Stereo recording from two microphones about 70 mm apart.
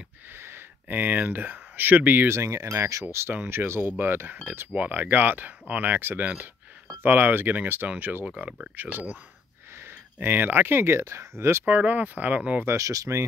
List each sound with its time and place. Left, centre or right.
0.4 s speech: right
2.3 s speech: right
10.2 s speech: right
11.0 s speech: right
11.6 s speech: right
12.6 s speech: right